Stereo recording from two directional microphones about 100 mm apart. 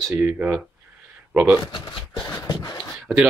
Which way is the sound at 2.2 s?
30° left (ahead or behind).